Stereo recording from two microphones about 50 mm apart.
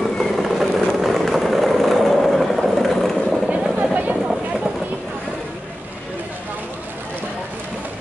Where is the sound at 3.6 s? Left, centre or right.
Centre.